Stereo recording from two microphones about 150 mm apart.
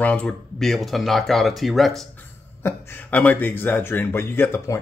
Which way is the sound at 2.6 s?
15° left (ahead or behind).